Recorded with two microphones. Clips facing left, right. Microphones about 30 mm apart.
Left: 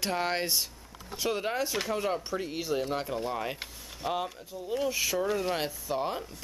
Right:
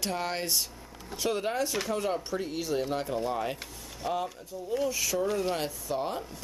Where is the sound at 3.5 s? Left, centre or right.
Centre.